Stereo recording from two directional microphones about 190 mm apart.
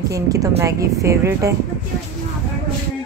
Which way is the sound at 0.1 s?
15° right (ahead or behind).